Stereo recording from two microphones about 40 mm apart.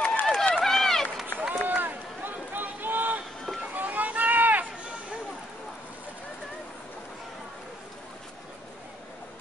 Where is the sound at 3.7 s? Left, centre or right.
Right.